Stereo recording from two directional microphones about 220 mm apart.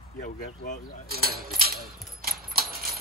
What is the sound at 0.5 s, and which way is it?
Speech, 40° left (ahead or behind).